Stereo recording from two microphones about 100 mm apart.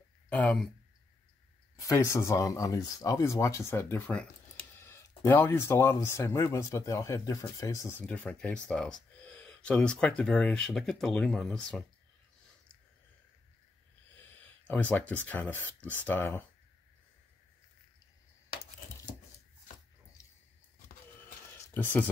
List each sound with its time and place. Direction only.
0.3 s speech: 15° left (ahead or behind)
1.8 s speech: 30° left (ahead or behind); by 4.3 s 15° left (ahead or behind)
4.7 s a sound: 25° left (ahead or behind)
5.9 s speech: 30° left (ahead or behind)
8.1 s speech: 15° left (ahead or behind)
14.3 s speech: 15° left (ahead or behind)
21.5 s a sound: 20° left (ahead or behind)